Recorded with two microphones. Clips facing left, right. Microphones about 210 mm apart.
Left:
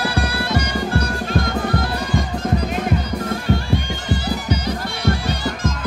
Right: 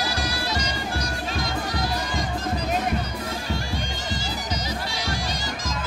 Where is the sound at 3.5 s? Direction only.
60° left (ahead or behind).